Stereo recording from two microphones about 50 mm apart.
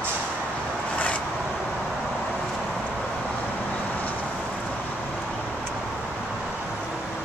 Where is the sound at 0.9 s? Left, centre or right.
Left.